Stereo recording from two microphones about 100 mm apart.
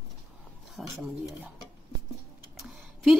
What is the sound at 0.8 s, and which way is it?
Speech, centre (ahead or behind).